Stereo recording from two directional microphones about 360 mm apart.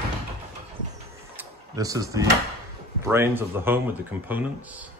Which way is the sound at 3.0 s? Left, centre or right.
Centre.